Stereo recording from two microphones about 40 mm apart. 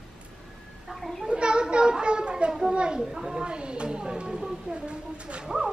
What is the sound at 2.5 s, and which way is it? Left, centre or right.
A child's voice, centre.